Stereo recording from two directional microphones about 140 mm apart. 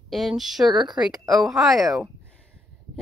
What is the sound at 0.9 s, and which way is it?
Speech, centre (ahead or behind).